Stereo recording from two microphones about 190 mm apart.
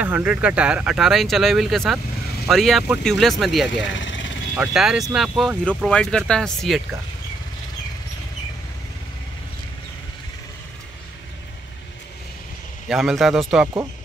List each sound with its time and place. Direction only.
0.0 s speech: 5° right (ahead or behind)
3.7 s vehicle: 75° left (ahead or behind)
4.6 s speech: 5° right (ahead or behind)
12.8 s speech: centre (ahead or behind)